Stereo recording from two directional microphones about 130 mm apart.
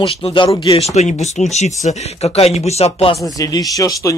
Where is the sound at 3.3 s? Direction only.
25° left (ahead or behind).